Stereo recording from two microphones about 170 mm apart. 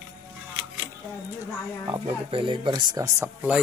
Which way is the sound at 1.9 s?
30° right (ahead or behind).